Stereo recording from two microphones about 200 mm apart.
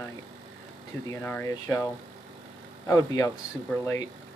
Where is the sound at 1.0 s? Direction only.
10° left (ahead or behind).